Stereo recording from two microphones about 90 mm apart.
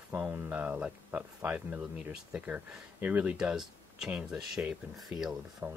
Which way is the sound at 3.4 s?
5° right (ahead or behind).